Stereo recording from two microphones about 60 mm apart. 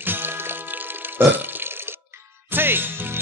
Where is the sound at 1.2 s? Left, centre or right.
Right.